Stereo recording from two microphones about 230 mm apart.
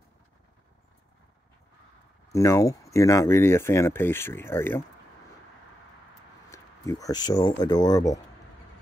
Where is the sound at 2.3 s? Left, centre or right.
Centre.